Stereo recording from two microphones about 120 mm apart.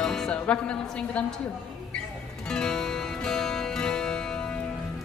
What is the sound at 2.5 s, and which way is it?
Music, 5° left (ahead or behind).